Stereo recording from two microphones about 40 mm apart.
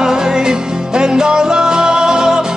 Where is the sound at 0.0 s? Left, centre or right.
Centre.